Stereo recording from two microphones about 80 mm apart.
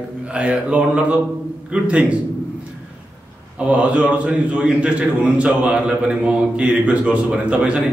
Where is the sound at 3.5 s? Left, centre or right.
Centre.